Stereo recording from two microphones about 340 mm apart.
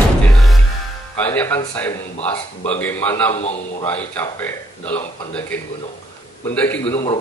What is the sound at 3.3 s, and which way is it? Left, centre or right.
Speech, centre.